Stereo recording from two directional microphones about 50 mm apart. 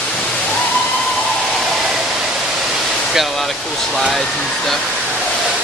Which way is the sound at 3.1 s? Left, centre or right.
Centre.